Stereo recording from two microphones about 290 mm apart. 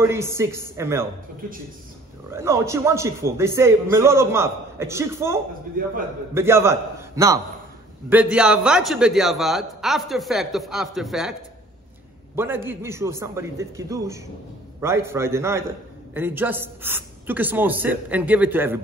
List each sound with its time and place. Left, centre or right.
0.0 s a man's voice: centre
2.3 s a man's voice: centre
5.8 s a man's voice: right
6.3 s a man's voice: centre
12.4 s a man's voice: centre